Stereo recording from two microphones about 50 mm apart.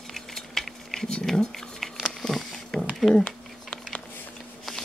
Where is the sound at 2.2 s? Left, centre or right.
Centre.